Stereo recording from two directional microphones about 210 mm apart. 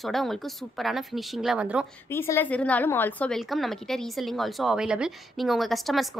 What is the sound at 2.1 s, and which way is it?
A woman's voice, 10° left (ahead or behind).